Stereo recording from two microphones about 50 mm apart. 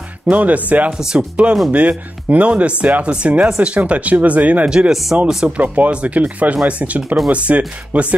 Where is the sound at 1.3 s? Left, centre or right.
Right.